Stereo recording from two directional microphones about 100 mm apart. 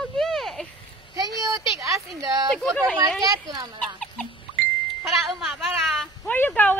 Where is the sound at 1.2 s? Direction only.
35° right (ahead or behind).